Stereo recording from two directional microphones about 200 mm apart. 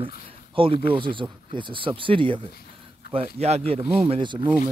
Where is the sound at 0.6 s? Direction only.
25° right (ahead or behind).